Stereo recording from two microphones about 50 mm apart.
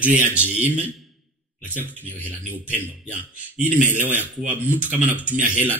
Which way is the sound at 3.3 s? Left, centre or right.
Right.